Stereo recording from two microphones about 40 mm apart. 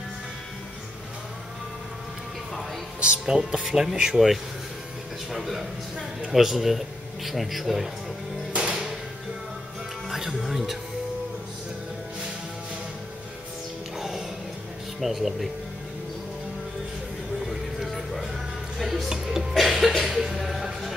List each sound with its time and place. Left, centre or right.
3.0 s speech: right
3.6 s speech: centre
3.9 s speech: right
5.3 s a man's voice: centre
8.5 s music: right
10.0 s music: centre
13.9 s music: centre
15.0 s a man's voice: centre
17.5 s music: centre
19.0 s music: centre
19.5 s a sound: centre
20.1 s music: centre